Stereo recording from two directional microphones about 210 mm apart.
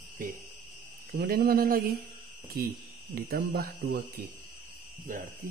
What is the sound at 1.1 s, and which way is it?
Speech, 45° right (ahead or behind).